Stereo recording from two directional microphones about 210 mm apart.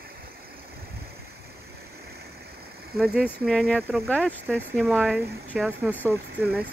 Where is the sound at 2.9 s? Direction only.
5° right (ahead or behind).